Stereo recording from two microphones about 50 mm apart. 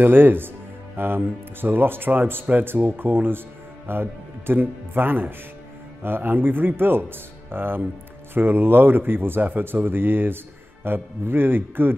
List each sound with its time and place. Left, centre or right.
0.0 s speech: right